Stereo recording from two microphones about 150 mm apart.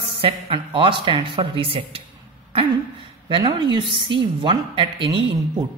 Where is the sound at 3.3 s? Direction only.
35° right (ahead or behind).